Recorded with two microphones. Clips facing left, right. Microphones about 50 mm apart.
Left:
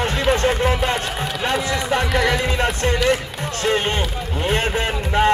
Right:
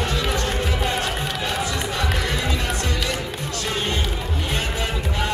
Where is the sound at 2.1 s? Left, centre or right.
Left.